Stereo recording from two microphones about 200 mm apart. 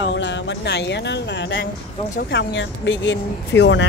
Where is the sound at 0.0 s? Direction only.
65° left (ahead or behind).